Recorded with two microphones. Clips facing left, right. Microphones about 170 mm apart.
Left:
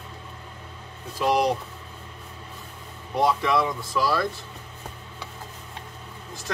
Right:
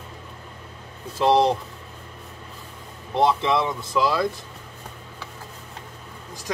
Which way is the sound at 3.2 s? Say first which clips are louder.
Right 2 dB; 25° right (ahead or behind).